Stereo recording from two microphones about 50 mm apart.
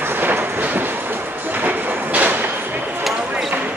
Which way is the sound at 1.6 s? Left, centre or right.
Right.